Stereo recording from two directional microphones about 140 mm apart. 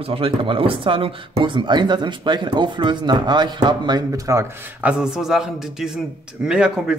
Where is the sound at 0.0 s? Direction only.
40° right (ahead or behind).